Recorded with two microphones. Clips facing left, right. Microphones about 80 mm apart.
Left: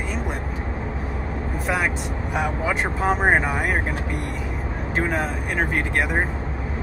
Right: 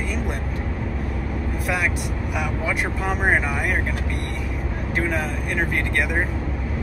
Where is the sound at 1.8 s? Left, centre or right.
Left.